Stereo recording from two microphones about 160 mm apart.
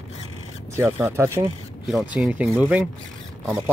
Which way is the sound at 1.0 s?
15° right (ahead or behind).